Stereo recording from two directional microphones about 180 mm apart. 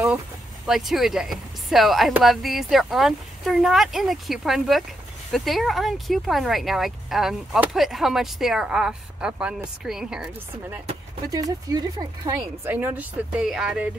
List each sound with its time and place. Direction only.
0.7 s speech: centre (ahead or behind)
11.2 s speech: 20° right (ahead or behind)
12.7 s speech: 10° right (ahead or behind)